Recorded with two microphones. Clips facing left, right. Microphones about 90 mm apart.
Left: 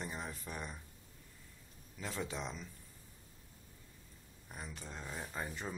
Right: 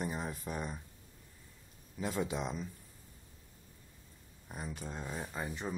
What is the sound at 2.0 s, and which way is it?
Speech, 15° right (ahead or behind).